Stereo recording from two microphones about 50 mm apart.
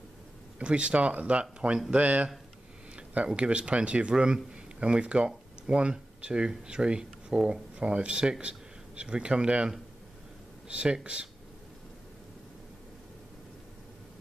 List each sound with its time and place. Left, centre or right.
0.6 s speech: right